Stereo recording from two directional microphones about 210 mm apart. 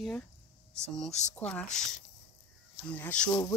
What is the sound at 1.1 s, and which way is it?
Speech, 35° left (ahead or behind).